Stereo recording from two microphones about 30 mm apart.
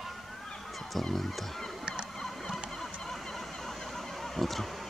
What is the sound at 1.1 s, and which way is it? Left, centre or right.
Goose, centre.